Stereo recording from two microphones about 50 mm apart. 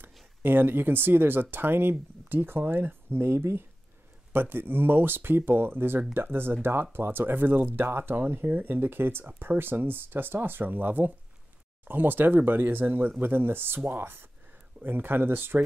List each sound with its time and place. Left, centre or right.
0.0 s speech: right
4.3 s speech: right